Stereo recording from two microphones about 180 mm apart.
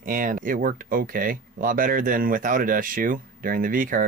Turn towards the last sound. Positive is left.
turn(degrees=-50)  # may be behind; listen again after turning